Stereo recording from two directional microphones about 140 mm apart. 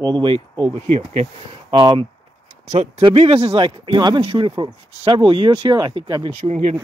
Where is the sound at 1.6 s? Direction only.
30° right (ahead or behind).